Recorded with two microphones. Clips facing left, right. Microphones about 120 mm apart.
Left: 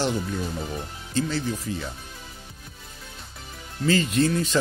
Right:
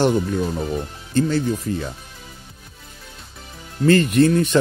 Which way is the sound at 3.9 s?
60° right (ahead or behind).